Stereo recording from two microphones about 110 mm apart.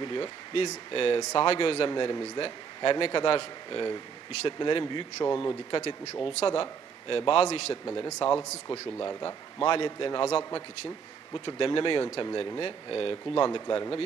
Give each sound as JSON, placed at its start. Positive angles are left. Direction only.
{"t": 0.0, "sound": "speech", "side_deg": 50}
{"t": 1.9, "sound": "a man's voice", "side_deg": 40}
{"t": 7.4, "sound": "a man's voice", "side_deg": 70}
{"t": 7.9, "sound": "speech", "side_deg": 45}
{"t": 10.2, "sound": "speech", "side_deg": 60}
{"t": 11.3, "sound": "speech", "side_deg": 50}